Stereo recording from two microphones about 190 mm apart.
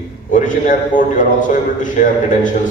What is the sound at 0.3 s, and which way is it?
A man's voice, 45° left (ahead or behind).